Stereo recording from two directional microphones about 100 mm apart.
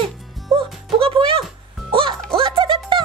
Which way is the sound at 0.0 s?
55° right (ahead or behind).